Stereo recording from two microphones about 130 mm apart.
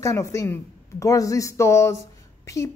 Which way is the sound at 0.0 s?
25° left (ahead or behind).